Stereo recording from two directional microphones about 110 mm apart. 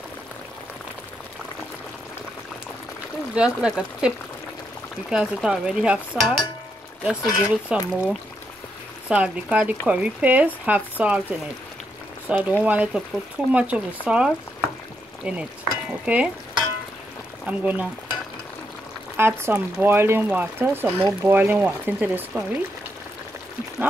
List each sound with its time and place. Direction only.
3.3 s speech: 10° right (ahead or behind)
5.1 s speech: 5° right (ahead or behind)
12.3 s speech: 10° right (ahead or behind)
16.1 s stir: 10° right (ahead or behind)
17.5 s speech: 15° right (ahead or behind)
19.1 s speech: 20° right (ahead or behind)